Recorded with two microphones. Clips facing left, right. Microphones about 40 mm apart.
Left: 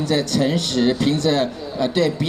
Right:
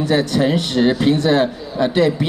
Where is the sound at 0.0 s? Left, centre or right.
Centre.